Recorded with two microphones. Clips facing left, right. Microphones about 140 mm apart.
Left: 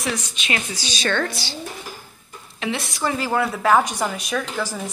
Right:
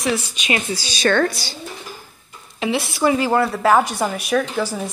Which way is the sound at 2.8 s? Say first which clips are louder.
Right 9 dB; 5° right (ahead or behind).